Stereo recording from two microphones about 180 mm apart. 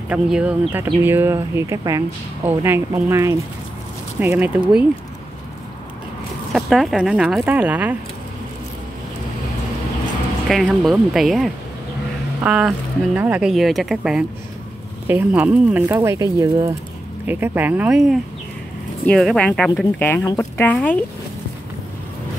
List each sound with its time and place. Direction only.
0.1 s speech: 5° right (ahead or behind)
6.5 s speech: centre (ahead or behind)
10.5 s speech: centre (ahead or behind)